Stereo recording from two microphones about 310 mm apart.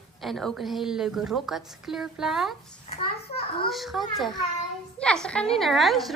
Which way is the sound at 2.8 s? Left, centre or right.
Left.